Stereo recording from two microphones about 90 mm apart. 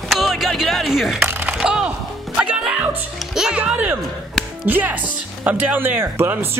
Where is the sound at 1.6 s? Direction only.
10° right (ahead or behind).